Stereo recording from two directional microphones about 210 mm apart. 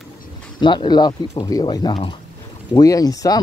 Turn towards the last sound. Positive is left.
turn(degrees=15)  # may be behind; listen again after turning